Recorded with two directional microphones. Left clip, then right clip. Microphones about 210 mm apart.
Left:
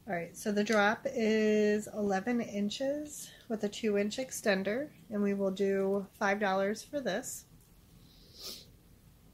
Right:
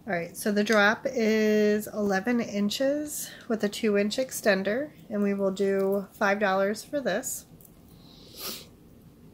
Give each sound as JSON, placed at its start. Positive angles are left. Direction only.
{"t": 0.0, "sound": "speech", "side_deg": -10}
{"t": 8.4, "sound": "sneeze", "side_deg": -30}